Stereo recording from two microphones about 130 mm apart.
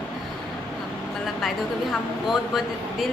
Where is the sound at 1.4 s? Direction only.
Centre (ahead or behind).